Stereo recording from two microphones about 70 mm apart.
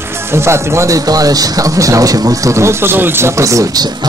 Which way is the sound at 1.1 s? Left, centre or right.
Right.